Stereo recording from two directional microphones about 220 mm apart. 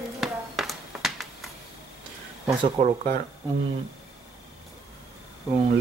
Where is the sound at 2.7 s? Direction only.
30° right (ahead or behind).